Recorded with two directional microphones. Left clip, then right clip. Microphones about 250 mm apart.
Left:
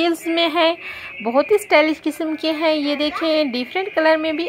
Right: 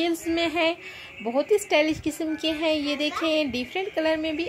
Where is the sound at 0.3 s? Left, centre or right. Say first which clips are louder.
Left 7 dB; centre.